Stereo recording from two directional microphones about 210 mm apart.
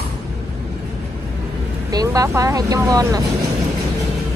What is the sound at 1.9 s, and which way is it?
Speech, 15° right (ahead or behind).